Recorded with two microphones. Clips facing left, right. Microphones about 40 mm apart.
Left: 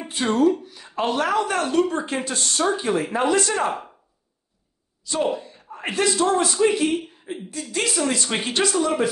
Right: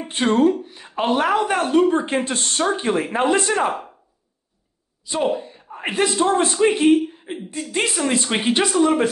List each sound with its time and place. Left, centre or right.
0.1 s speech: right
0.5 s a woman's voice: right
3.5 s speech: centre
5.0 s a man's voice: right